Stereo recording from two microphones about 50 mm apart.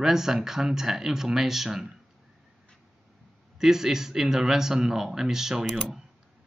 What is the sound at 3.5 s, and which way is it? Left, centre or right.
Speech, centre.